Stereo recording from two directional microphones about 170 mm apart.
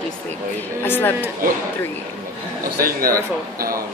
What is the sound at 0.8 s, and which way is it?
Speech, 15° left (ahead or behind).